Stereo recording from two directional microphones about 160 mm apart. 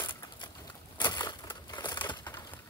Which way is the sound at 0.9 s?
25° left (ahead or behind).